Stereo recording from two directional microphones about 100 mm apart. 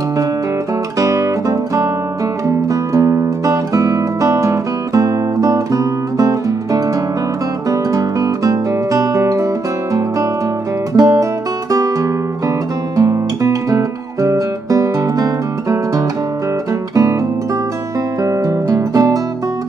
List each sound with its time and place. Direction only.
0.9 s music: 35° right (ahead or behind)
2.7 s music: 35° right (ahead or behind)
7.7 s guitar: 35° right (ahead or behind)
11.0 s music: 35° right (ahead or behind)
12.9 s guitar: 35° right (ahead or behind)
18.2 s music: 35° right (ahead or behind)